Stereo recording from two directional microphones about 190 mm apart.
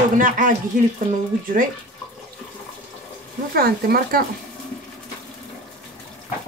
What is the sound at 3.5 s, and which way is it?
Speech, 50° right (ahead or behind).